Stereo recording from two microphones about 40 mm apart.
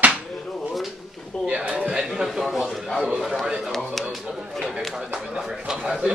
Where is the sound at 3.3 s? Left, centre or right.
Right.